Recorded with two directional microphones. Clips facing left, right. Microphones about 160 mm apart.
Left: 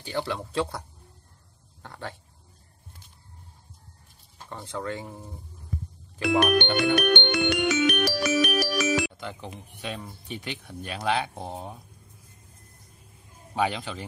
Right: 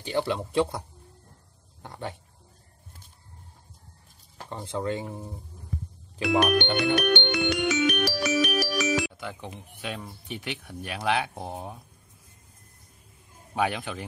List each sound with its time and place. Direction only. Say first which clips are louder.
0.0 s speech: right 3 dB; 20° right (ahead or behind)
4.5 s speech: right 3 dB; 20° right (ahead or behind)
6.6 s music: left 1 dB; 55° left (ahead or behind)
9.4 s speech: even; 5° right (ahead or behind)
13.6 s speech: even; 10° right (ahead or behind)